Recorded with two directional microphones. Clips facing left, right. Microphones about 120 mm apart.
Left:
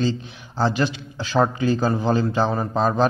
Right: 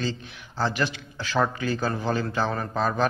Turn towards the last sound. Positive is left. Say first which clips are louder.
# left 5 dB
turn(degrees=25)  # may be behind; listen again after turning